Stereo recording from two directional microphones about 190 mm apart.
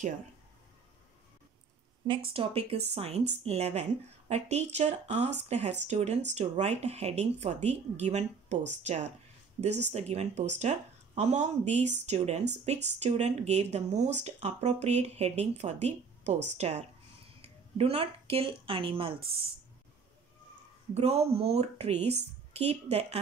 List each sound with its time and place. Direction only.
2.0 s a woman's voice: 30° right (ahead or behind)
20.9 s speech: 35° right (ahead or behind)